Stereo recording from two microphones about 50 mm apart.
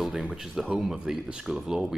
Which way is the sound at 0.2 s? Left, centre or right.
Centre.